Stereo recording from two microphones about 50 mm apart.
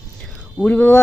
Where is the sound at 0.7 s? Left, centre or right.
Left.